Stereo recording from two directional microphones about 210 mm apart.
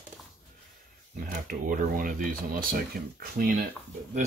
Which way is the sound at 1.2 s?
45° right (ahead or behind).